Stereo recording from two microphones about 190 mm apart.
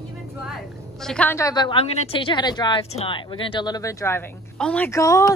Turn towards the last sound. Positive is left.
turn(degrees=15)  # may be behind; listen again after turning